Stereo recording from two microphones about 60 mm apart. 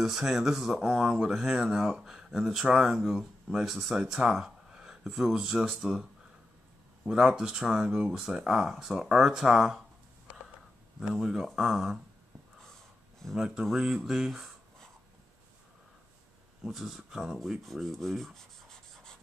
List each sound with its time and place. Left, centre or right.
0.0 s rub: centre
0.7 s speech: centre
2.7 s rub: centre
4.1 s speech: centre
7.1 s speech: centre
11.1 s rub: centre
13.2 s rub: centre
16.6 s rub: centre